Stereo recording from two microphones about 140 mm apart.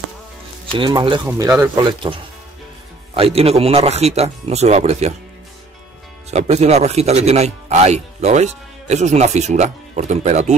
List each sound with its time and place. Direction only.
0.7 s speech: 35° right (ahead or behind)
1.2 s speech: 20° right (ahead or behind)
3.2 s speech: 45° right (ahead or behind)
6.3 s speech: 50° right (ahead or behind)